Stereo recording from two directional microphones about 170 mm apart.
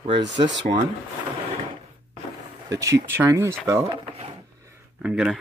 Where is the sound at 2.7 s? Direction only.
20° right (ahead or behind).